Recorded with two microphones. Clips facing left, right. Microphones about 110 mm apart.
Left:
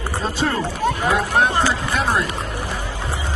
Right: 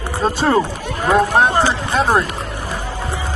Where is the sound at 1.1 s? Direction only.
40° right (ahead or behind).